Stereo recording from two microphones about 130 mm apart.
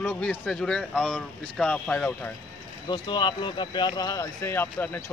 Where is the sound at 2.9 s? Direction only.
35° left (ahead or behind).